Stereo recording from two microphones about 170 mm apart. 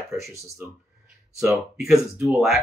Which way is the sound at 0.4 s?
Centre (ahead or behind).